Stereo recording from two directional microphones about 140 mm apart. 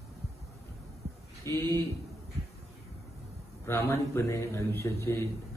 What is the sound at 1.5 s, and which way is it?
Speech, 20° left (ahead or behind).